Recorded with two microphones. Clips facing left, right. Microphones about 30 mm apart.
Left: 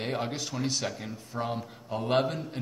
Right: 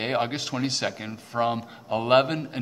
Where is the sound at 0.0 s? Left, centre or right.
Right.